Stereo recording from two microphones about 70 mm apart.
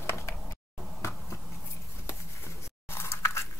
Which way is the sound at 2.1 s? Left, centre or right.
Left.